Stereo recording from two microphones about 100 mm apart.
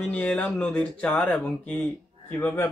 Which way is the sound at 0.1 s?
15° left (ahead or behind).